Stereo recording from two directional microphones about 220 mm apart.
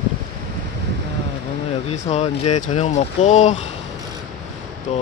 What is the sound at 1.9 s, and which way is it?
Speech, 30° left (ahead or behind).